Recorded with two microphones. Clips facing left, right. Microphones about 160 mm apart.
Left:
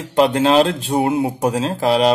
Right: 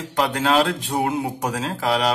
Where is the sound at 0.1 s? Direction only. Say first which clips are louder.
Left 6 dB; 25° left (ahead or behind).